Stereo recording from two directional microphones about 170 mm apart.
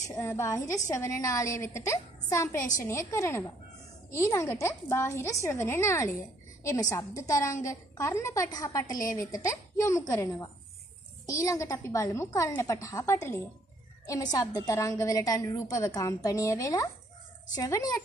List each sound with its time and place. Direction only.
0.1 s a woman's voice: 15° left (ahead or behind)